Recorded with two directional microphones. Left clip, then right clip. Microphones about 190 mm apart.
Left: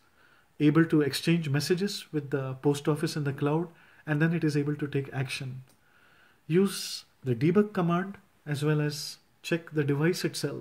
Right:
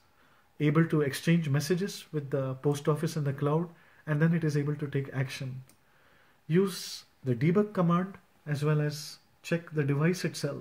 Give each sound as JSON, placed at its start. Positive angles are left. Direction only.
{"t": 0.6, "sound": "speech", "side_deg": 50}
{"t": 6.4, "sound": "speech", "side_deg": 55}